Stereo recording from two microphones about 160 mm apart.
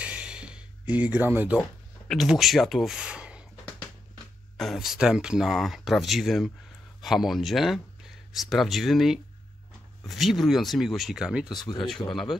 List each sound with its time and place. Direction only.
0.0 s a sound: 5° right (ahead or behind)
1.6 s speech: centre (ahead or behind)
4.6 s speech: centre (ahead or behind)
11.5 s speech: 25° left (ahead or behind)
12.1 s speech: centre (ahead or behind)